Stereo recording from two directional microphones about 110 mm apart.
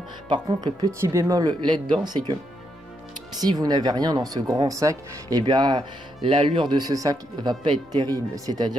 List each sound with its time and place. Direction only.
0.3 s speech: 45° right (ahead or behind)
1.0 s speech: 25° right (ahead or behind); by 2.3 s 40° right (ahead or behind)
3.3 s speech: 40° right (ahead or behind)
5.4 s speech: 45° right (ahead or behind)